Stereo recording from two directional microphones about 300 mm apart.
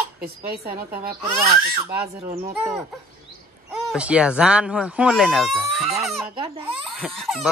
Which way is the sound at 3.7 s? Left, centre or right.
Centre.